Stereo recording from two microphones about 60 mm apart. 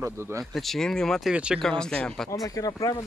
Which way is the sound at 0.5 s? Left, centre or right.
Centre.